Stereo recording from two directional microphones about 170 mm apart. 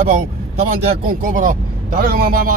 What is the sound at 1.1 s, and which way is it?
A man's voice, 55° right (ahead or behind).